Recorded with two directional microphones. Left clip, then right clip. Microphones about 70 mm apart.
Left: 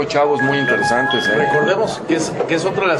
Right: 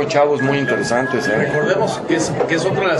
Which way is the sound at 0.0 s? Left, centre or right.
Centre.